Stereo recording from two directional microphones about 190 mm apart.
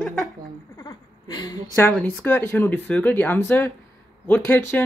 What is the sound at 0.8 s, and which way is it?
Speech, 20° left (ahead or behind).